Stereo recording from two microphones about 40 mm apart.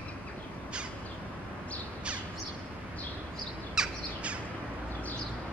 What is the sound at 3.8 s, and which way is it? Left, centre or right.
Bird vocalization, centre.